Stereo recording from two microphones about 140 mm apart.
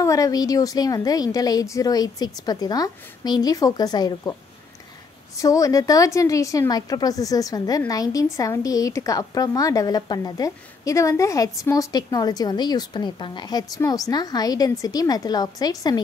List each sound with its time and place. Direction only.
0.0 s a woman's voice: 25° left (ahead or behind)
5.4 s a woman's voice: 25° left (ahead or behind)